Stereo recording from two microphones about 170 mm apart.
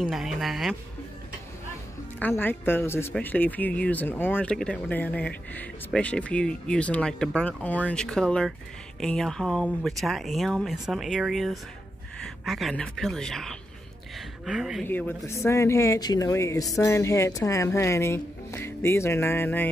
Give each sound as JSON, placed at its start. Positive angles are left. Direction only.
{"t": 0.0, "sound": "speech", "side_deg": 0}
{"t": 2.1, "sound": "speech", "side_deg": 10}
{"t": 14.9, "sound": "speech", "side_deg": 10}